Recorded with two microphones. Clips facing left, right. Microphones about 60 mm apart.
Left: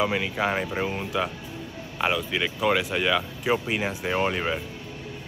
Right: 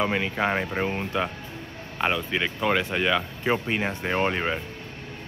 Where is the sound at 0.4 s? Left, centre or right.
Centre.